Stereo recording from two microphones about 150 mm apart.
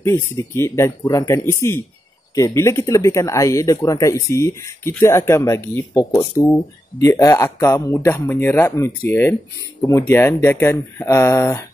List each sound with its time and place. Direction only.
0.0 s speech: 15° left (ahead or behind)